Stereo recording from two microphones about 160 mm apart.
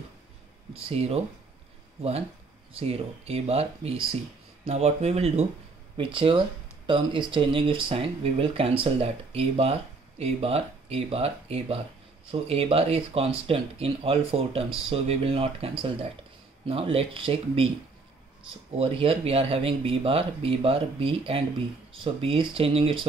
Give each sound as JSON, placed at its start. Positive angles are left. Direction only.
{"t": 0.7, "sound": "speech", "side_deg": -40}
{"t": 2.8, "sound": "speech", "side_deg": -40}
{"t": 18.8, "sound": "speech", "side_deg": -35}